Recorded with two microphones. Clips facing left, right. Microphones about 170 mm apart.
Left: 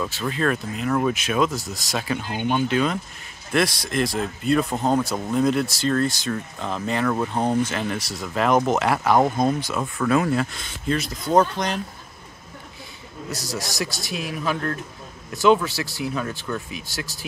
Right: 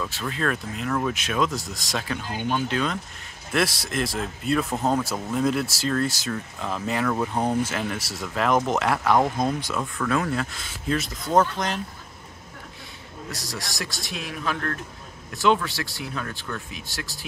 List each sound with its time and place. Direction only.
0.0 s speech: 5° left (ahead or behind)
2.3 s speech: 20° left (ahead or behind)
2.7 s speech: 5° left (ahead or behind)
13.3 s speech: centre (ahead or behind)